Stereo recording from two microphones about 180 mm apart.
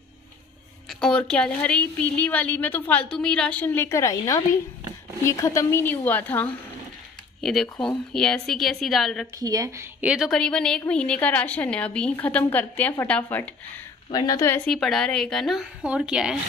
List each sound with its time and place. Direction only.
0.8 s a woman's voice: 5° left (ahead or behind)
9.4 s a woman's voice: 20° right (ahead or behind); by 13.5 s 10° left (ahead or behind)
14.1 s a woman's voice: 20° left (ahead or behind)
14.7 s speech: centre (ahead or behind)